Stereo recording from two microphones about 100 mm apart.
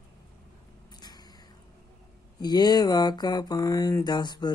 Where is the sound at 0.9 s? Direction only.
45° left (ahead or behind).